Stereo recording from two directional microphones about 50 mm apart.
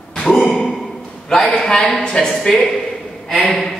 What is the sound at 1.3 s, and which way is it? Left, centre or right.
A man's voice, centre.